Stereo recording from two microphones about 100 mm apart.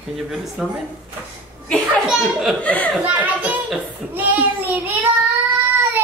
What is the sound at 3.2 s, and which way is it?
Child singing, 15° right (ahead or behind).